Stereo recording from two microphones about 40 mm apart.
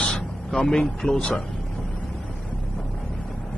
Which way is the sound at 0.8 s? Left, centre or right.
Centre.